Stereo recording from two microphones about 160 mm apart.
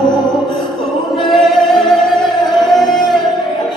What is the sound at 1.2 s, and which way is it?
Music, centre (ahead or behind).